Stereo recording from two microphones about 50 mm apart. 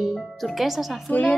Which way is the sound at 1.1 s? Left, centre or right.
Left.